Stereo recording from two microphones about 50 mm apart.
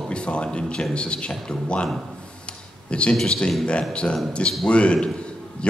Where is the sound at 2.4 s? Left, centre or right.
Left.